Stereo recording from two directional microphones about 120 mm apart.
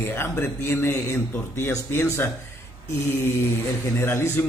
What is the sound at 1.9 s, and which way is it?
Speech, 20° left (ahead or behind).